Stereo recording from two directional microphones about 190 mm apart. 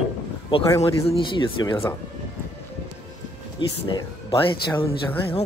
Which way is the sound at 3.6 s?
25° left (ahead or behind).